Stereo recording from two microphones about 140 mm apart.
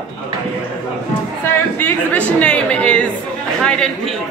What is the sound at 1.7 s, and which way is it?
A man's voice, 10° left (ahead or behind).